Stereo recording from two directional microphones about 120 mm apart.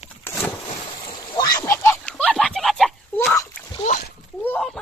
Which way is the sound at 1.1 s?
35° left (ahead or behind).